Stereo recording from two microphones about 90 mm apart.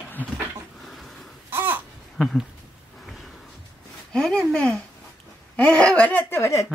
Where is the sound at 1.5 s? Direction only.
25° right (ahead or behind).